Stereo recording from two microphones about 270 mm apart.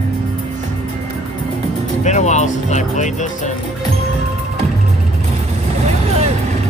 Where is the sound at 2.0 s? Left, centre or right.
Left.